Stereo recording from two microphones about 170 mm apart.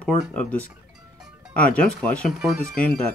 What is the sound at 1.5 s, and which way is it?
Speech, 5° left (ahead or behind).